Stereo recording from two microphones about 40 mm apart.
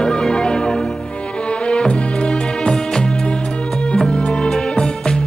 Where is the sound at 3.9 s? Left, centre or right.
Left.